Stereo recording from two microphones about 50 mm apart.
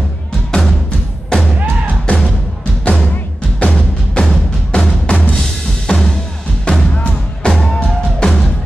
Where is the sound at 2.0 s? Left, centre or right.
Centre.